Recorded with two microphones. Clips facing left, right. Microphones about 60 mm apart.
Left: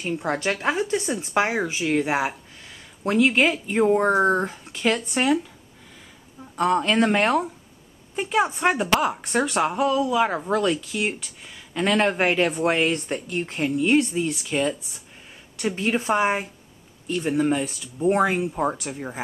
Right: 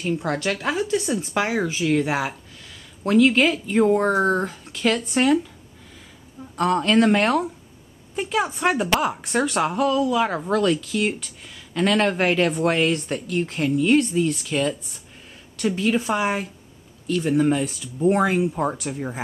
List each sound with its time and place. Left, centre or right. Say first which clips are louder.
0.2 s speech: even; left
6.5 s speech: right 2 dB; centre; by 16.4 s left
17.3 s speech: right 2 dB; centre